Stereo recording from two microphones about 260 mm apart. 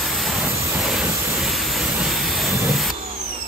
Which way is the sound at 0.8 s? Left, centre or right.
Centre.